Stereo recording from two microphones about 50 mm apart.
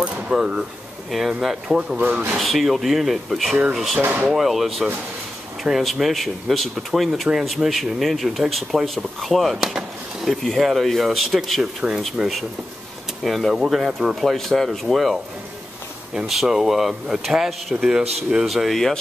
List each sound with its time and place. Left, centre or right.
0.0 s speech: centre
1.1 s speech: centre
1.7 s speech: centre
2.0 s speech: right
2.3 s speech: centre
4.0 s speech: right
4.3 s speech: centre
9.6 s chop: centre
10.4 s speech: centre
11.8 s speech: right
13.2 s speech: centre
13.5 s speech: centre
16.3 s speech: centre
18.5 s speech: centre